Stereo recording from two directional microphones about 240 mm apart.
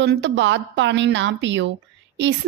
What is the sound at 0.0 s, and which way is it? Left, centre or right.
A woman's voice, right.